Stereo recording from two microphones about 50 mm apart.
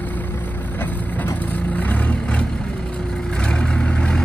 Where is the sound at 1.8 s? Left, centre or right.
Left.